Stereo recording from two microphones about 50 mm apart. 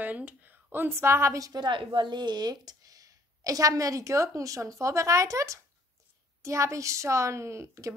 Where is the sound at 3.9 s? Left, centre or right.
Right.